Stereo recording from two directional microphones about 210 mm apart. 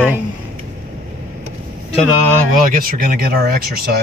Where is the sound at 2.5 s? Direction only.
40° right (ahead or behind).